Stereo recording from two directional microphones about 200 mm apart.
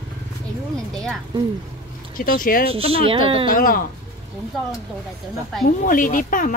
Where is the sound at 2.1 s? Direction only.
45° left (ahead or behind).